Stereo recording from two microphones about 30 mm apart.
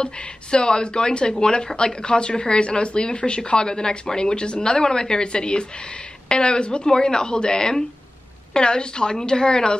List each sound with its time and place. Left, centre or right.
0.0 s speech: left